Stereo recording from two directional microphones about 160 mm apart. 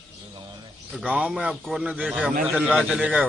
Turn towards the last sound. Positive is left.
turn(degrees=-5)  # may be behind; listen again after turning